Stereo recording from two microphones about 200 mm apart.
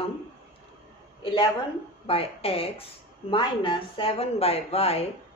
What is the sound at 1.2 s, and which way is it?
Speech, 25° left (ahead or behind).